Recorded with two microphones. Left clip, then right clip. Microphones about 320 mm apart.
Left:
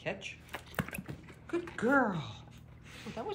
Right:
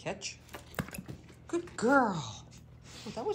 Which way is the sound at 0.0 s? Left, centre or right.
Centre.